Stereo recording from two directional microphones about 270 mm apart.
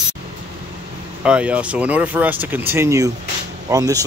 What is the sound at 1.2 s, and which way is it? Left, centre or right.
Speech, centre.